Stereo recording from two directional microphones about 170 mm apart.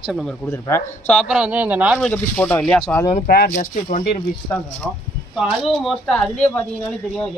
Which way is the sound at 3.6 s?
45° left (ahead or behind).